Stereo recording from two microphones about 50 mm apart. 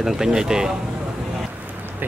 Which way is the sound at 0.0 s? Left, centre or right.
Centre.